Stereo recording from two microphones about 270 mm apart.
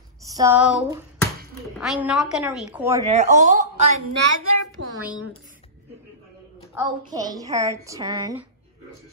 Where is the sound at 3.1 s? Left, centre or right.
Right.